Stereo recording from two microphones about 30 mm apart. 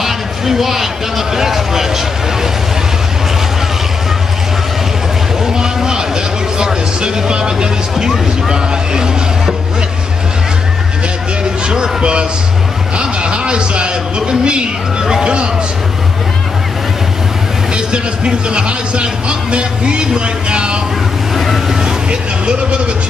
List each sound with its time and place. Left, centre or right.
0.0 s a sound: centre
5.4 s a sound: centre
8.5 s speech: right
11.6 s a man's voice: right
17.7 s speech: right
21.6 s vehicle: centre
22.1 s speech: right